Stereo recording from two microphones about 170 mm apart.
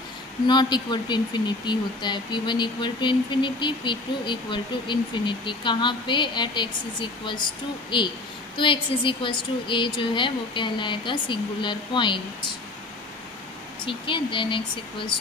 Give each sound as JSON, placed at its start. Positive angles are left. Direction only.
{"t": 0.5, "sound": "speech", "side_deg": 25}
{"t": 8.5, "sound": "speech", "side_deg": 30}
{"t": 13.8, "sound": "speech", "side_deg": 30}